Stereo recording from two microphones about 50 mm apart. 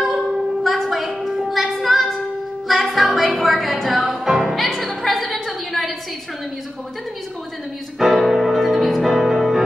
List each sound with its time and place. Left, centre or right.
0.7 s a sound: centre
2.7 s music: centre
8.0 s music: centre